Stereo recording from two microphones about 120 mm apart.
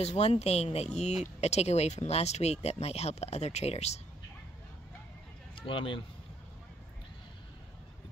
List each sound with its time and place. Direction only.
0.0 s speech: 60° left (ahead or behind)
5.6 s speech: 45° left (ahead or behind)